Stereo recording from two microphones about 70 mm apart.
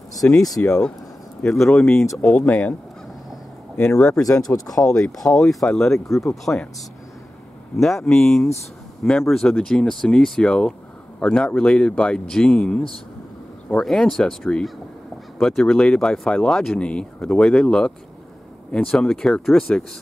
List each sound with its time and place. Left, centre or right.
0.2 s speech: left
0.6 s speech: centre
3.8 s speech: centre
4.2 s speech: left
4.8 s speech: centre
7.7 s speech: centre
13.8 s speech: centre